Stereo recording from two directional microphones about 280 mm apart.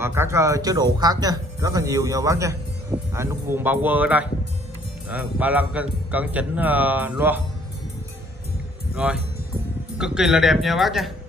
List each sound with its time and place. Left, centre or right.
0.0 s a man's voice: centre
8.9 s a man's voice: centre